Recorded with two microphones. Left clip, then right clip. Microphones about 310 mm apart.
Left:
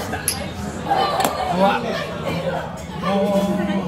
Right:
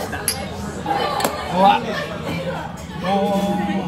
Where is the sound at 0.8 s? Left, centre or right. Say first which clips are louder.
Left 2 dB; centre.